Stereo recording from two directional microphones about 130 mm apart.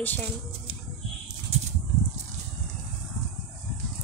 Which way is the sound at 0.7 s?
45° right (ahead or behind).